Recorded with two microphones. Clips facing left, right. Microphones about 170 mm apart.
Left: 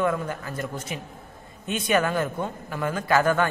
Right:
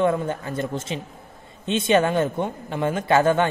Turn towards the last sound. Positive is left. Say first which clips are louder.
# right 3 dB
turn(degrees=-25)  # may be behind; listen again after turning